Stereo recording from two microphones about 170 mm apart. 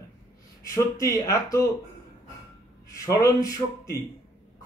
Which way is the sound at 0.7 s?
20° left (ahead or behind).